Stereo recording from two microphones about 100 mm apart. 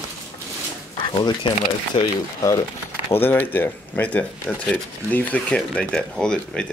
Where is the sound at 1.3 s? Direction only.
50° left (ahead or behind).